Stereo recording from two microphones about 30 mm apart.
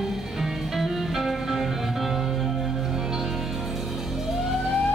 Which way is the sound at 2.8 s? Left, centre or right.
Centre.